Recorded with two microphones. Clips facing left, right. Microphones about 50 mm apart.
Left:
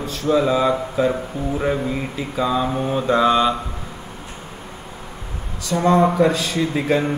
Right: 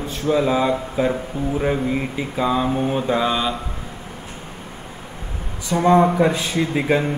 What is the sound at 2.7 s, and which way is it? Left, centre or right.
Mantra, centre.